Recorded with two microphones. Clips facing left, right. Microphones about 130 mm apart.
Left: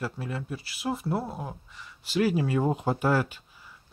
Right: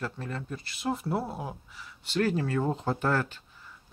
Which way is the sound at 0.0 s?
5° left (ahead or behind).